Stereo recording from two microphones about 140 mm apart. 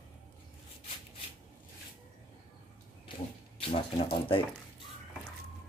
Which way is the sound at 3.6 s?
40° left (ahead or behind).